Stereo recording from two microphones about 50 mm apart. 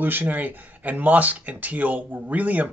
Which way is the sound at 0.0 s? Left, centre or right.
Right.